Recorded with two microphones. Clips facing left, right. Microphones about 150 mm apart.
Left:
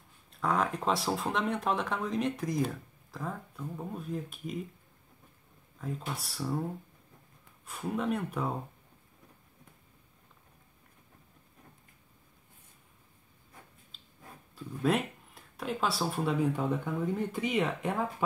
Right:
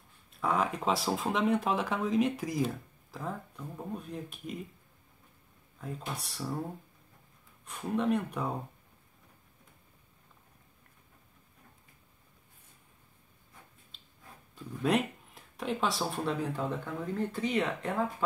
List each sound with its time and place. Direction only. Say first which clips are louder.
0.4 s speech: even; centre (ahead or behind)
5.8 s speech: left 2 dB; centre (ahead or behind)
7.6 s speech: right 2 dB; 5° left (ahead or behind)
14.5 s speech: even; centre (ahead or behind)
16.8 s speech: left 2 dB; 15° left (ahead or behind)